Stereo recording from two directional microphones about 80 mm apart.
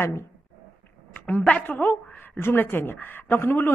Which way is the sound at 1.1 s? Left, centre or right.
Centre.